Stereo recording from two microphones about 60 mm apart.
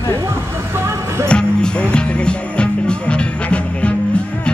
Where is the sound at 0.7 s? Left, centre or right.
Right.